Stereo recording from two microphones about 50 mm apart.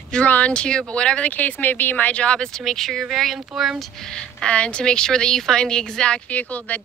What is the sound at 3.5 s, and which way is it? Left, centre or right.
Speech, centre.